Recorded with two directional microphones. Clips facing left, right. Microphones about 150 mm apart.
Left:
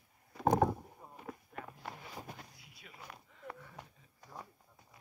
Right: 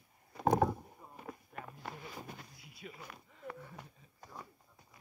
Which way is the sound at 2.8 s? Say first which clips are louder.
Right 8 dB; 25° right (ahead or behind).